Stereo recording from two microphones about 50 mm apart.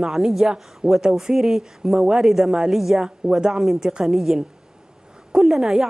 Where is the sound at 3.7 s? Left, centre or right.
Centre.